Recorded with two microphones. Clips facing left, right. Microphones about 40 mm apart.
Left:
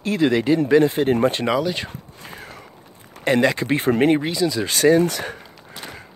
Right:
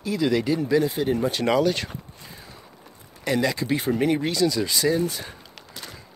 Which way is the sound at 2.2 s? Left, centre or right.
Left.